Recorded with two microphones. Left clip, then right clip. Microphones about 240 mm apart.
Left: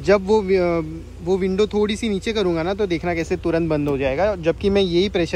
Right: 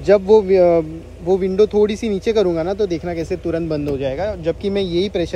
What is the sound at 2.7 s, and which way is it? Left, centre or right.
Speech, centre.